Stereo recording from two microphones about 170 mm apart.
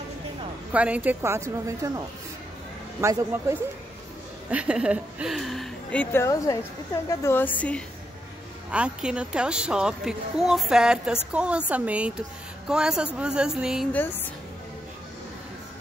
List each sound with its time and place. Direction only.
0.7 s a woman's voice: 10° right (ahead or behind); by 7.8 s 10° left (ahead or behind)
8.7 s a woman's voice: 5° right (ahead or behind)